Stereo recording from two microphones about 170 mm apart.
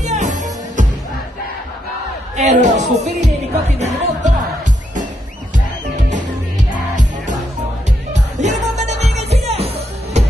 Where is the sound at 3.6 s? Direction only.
40° right (ahead or behind).